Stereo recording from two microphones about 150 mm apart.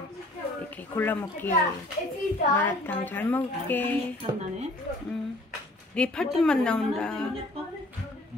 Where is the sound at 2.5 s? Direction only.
10° left (ahead or behind).